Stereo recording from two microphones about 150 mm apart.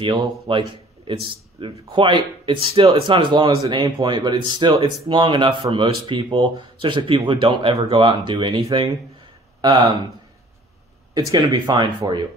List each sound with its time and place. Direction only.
0.0 s a man's voice: 30° right (ahead or behind)
11.1 s speech: 25° right (ahead or behind)